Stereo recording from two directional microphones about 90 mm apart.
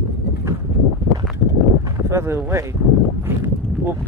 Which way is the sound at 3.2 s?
25° right (ahead or behind).